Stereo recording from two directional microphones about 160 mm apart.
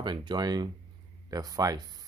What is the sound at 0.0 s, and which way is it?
Speech, 30° right (ahead or behind).